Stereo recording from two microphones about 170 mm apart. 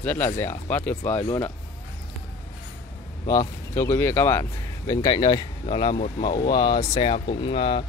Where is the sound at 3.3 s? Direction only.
20° left (ahead or behind).